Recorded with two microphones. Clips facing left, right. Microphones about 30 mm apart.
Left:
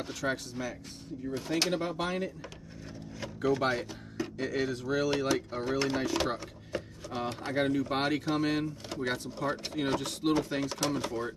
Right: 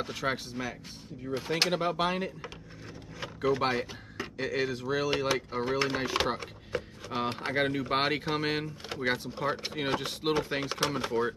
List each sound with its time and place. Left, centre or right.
0.0 s speech: right
3.2 s a sound: right
4.4 s speech: centre